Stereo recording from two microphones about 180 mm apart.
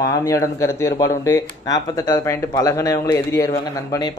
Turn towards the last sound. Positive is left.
turn(degrees=20)  # may be behind; listen again after turning